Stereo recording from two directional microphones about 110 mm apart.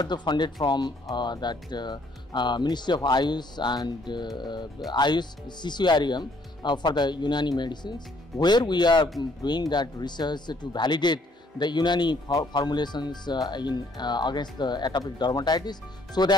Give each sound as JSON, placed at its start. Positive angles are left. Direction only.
{"t": 0.0, "sound": "speech", "side_deg": 40}